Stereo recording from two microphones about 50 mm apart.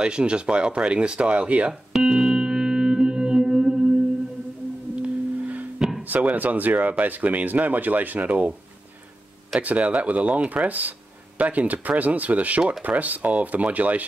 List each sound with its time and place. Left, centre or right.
0.0 s speech: centre
1.7 s music: centre
4.9 s music: right
6.0 s speech: right
9.6 s speech: right